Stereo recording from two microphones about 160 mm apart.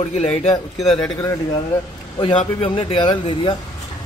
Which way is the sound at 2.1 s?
30° left (ahead or behind).